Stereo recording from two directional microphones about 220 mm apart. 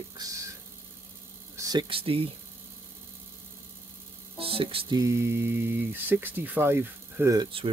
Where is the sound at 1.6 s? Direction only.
20° right (ahead or behind).